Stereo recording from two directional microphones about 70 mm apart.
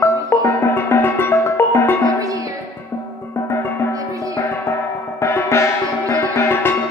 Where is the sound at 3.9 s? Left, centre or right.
Right.